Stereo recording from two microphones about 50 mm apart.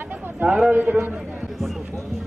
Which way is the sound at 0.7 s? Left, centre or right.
Right.